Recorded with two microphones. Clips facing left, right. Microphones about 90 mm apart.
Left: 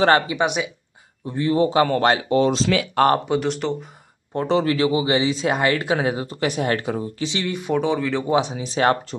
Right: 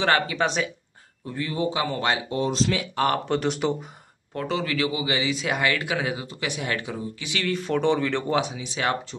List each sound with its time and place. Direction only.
0.3 s speech: 15° left (ahead or behind)
1.2 s a man's voice: 25° left (ahead or behind); by 1.9 s 40° left (ahead or behind)
1.9 s speech: 55° left (ahead or behind); by 2.9 s 80° left
3.3 s speech: centre (ahead or behind)
4.3 s a man's voice: 30° left (ahead or behind)
7.2 s speech: 20° left (ahead or behind); by 8.3 s 5° left (ahead or behind)
8.3 s speech: 20° left (ahead or behind)
8.5 s a man's voice: 40° left (ahead or behind)